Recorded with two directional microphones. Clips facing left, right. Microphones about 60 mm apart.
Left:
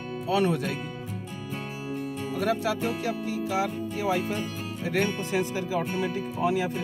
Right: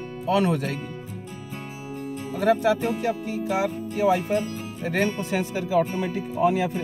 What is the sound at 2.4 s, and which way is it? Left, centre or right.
Speech, right.